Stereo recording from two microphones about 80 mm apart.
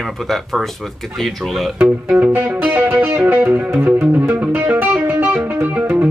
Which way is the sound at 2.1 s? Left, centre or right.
Right.